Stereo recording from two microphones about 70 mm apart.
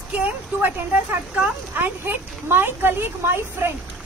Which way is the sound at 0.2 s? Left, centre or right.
Right.